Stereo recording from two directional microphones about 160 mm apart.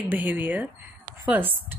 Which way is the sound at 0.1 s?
10° right (ahead or behind).